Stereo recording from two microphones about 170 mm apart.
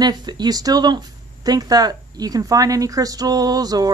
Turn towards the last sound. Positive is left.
turn(degrees=-20)  # may be behind; listen again after turning